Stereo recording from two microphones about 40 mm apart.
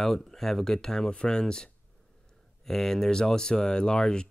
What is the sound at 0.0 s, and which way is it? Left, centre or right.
Speech, centre.